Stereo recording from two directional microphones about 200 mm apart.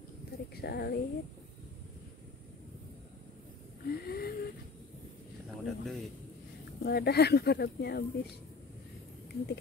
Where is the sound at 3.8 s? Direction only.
50° left (ahead or behind).